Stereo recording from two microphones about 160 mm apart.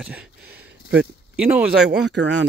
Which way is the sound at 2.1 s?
90° right.